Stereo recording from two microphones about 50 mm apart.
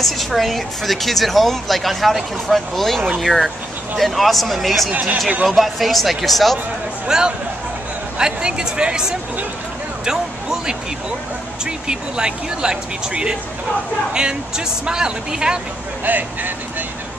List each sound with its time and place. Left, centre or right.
0.0 s speech: centre
4.9 s speech: right
5.5 s speech: centre
7.1 s speech: centre
14.9 s speech: centre
16.1 s speech: right